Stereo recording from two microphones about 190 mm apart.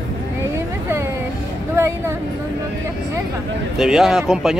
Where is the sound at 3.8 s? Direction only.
Centre (ahead or behind).